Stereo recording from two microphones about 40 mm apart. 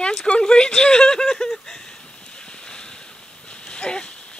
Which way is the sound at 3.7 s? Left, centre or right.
Left.